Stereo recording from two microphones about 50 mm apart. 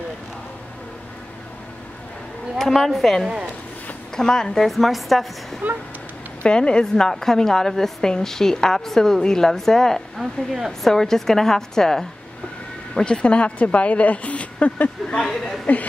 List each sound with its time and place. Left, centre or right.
2.6 s a woman's voice: centre
4.2 s a woman's voice: centre
4.6 s a woman's voice: centre
6.4 s a woman's voice: centre
15.2 s a woman's voice: centre
15.6 s speech: left